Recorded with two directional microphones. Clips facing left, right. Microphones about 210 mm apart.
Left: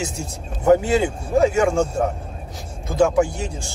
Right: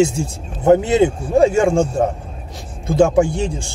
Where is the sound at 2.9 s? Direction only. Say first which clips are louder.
Right 4 dB; 25° right (ahead or behind).